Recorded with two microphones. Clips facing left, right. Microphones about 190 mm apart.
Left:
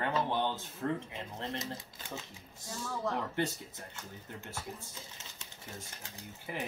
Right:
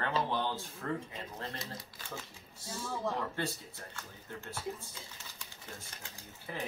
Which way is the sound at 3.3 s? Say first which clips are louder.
Left 3 dB; 20° left (ahead or behind).